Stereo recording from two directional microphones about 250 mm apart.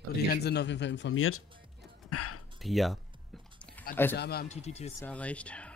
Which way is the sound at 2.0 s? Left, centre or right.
Left.